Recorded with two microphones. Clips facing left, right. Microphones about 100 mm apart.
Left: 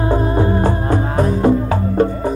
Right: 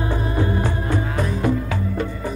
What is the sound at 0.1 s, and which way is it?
Music, 40° left (ahead or behind).